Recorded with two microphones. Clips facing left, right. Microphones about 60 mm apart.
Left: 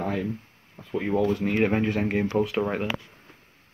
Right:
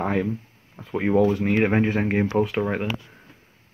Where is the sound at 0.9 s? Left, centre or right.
Right.